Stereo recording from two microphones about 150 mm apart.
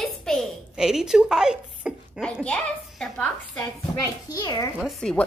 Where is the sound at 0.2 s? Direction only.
Centre (ahead or behind).